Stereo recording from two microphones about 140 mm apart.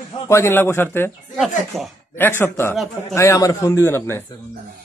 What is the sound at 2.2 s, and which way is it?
A man's voice, 15° left (ahead or behind).